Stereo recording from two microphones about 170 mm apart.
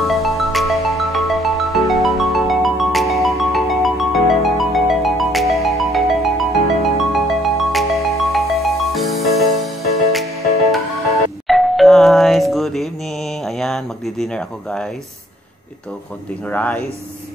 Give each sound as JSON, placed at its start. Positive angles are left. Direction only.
{"t": 0.0, "sound": "music", "side_deg": 0}
{"t": 11.4, "sound": "doorbell", "side_deg": 0}
{"t": 16.4, "sound": "speech", "side_deg": 10}